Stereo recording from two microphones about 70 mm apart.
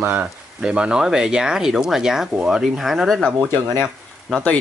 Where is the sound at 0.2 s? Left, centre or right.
Centre.